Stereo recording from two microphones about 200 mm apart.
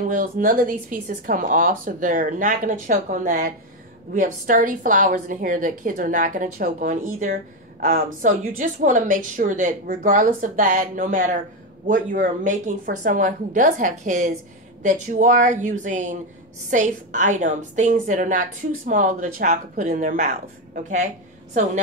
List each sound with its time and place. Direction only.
0.1 s a woman's voice: 40° right (ahead or behind)